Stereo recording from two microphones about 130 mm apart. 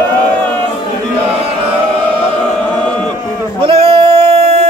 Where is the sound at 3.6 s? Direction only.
45° right (ahead or behind).